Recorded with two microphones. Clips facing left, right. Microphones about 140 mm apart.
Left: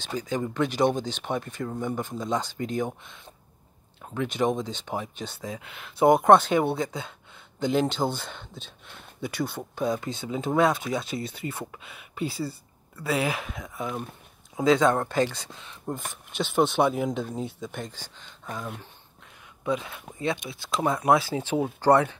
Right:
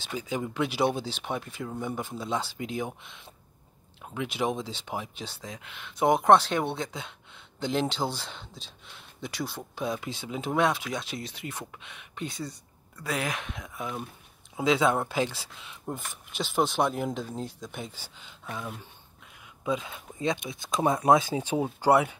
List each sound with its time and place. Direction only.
0.1 s speech: 5° right (ahead or behind)
4.0 s speech: 5° right (ahead or behind)
16.0 s speech: 50° left (ahead or behind)
16.3 s speech: centre (ahead or behind)